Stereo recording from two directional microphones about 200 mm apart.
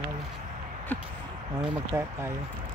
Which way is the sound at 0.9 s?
10° left (ahead or behind).